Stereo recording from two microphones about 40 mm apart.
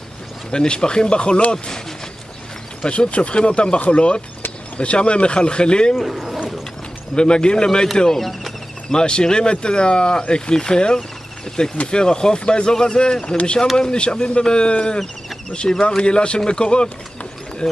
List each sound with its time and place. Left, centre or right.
0.5 s speech: left
2.8 s speech: left
5.9 s speech: centre
7.2 s speech: left
8.2 s speech: centre
8.9 s speech: left